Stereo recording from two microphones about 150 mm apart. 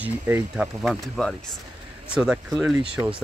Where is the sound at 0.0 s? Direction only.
10° right (ahead or behind).